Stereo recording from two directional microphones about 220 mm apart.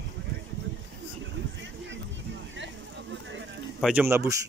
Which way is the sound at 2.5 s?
55° right (ahead or behind).